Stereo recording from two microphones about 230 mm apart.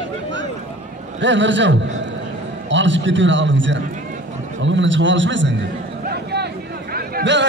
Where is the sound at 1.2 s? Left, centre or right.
Right.